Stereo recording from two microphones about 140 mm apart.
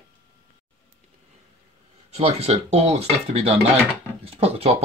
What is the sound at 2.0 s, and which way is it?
Speech, 50° right (ahead or behind).